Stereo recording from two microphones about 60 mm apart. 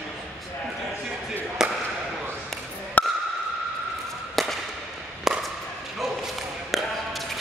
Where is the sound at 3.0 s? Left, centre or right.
Left.